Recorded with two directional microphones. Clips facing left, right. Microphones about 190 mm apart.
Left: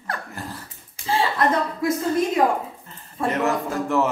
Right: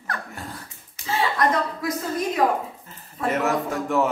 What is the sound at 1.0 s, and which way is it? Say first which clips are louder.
Speech: left 1 dB; 30° left (ahead or behind).